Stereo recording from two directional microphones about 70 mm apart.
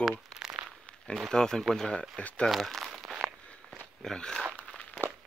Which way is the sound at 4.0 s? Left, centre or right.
Centre.